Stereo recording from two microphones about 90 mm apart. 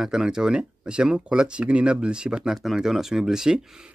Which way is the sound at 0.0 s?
5° right (ahead or behind).